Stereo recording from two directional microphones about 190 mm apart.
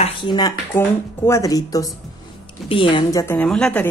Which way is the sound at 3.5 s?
5° left (ahead or behind).